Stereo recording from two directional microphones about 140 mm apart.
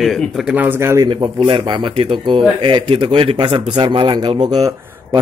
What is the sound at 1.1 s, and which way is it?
Speech, 35° right (ahead or behind).